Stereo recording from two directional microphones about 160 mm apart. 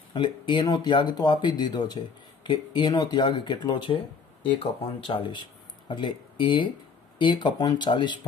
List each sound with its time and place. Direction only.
0.1 s speech: 25° left (ahead or behind)